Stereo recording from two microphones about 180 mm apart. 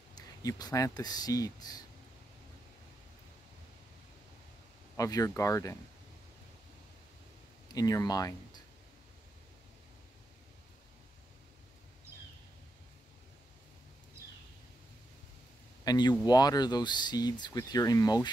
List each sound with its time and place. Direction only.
0.1 s speech: 20° left (ahead or behind)
4.9 s speech: 20° left (ahead or behind)
7.6 s speech: 20° left (ahead or behind)
15.8 s speech: 20° left (ahead or behind)